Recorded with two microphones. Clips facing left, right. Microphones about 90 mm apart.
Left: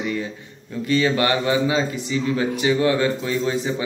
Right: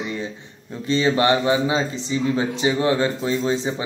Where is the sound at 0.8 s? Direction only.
25° right (ahead or behind).